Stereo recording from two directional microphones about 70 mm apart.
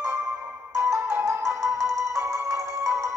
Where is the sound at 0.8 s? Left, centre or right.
Right.